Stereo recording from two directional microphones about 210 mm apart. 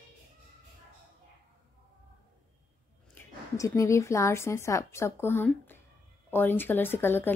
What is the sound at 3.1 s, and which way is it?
A woman's voice, 15° left (ahead or behind).